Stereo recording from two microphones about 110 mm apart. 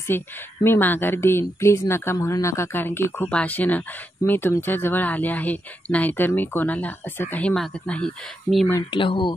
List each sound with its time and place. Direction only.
0.1 s speech: 20° left (ahead or behind)
8.9 s speech: 50° left (ahead or behind)